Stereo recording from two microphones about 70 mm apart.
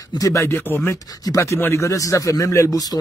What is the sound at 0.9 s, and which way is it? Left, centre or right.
Speech, left.